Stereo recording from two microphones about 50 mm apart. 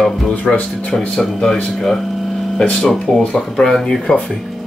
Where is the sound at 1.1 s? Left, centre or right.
Centre.